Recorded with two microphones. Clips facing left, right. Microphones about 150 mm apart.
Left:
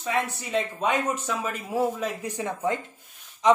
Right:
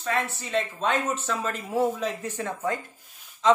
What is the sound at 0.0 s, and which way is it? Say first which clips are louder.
Speech: left 1 dB; 15° left (ahead or behind).